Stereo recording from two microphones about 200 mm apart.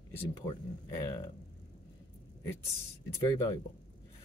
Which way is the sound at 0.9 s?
20° left (ahead or behind).